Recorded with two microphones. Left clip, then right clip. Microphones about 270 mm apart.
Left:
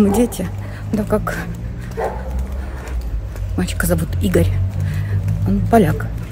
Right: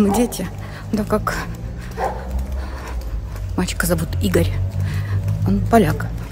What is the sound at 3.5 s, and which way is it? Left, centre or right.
Speech, centre.